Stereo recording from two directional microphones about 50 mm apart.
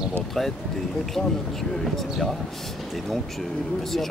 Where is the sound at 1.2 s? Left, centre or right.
Centre.